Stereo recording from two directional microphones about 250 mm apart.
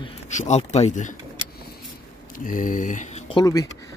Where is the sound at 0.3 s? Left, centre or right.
Left.